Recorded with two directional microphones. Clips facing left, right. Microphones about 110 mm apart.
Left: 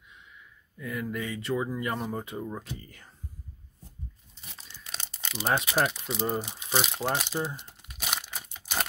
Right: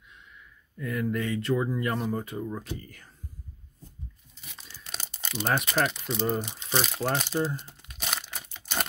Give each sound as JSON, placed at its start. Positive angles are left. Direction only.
{"t": 0.7, "sound": "speech", "side_deg": 5}
{"t": 4.6, "sound": "tearing", "side_deg": -5}
{"t": 5.7, "sound": "speech", "side_deg": 5}
{"t": 7.8, "sound": "crumpling", "side_deg": 5}